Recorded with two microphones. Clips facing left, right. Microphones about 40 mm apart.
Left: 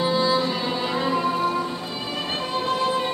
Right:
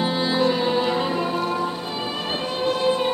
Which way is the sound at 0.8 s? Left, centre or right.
Centre.